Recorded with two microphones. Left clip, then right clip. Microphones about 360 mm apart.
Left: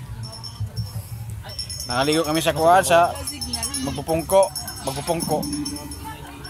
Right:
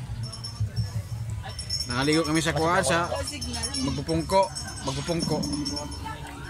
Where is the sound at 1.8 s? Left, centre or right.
Centre.